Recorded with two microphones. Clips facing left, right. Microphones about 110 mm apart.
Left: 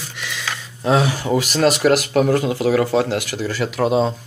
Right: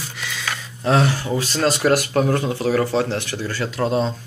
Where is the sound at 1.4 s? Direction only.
90° left.